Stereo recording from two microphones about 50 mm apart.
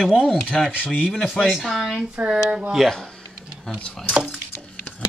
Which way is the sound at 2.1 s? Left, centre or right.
Right.